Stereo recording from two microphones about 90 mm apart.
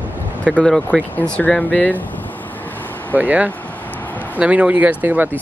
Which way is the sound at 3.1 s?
20° right (ahead or behind).